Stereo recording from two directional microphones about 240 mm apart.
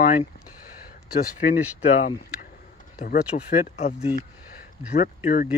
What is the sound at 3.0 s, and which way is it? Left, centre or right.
Speech, left.